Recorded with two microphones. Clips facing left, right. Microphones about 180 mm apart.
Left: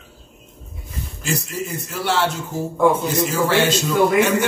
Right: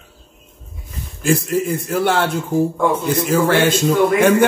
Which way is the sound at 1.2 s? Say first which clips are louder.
Right 9 dB; 50° right (ahead or behind).